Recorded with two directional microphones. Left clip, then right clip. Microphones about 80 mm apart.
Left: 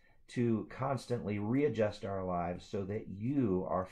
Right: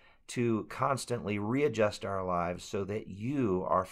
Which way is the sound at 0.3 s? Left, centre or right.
Right.